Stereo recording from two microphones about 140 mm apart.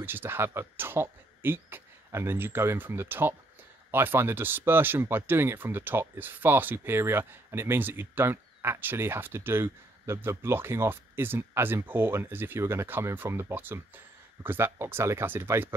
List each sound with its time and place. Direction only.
0.0 s speech: 15° right (ahead or behind)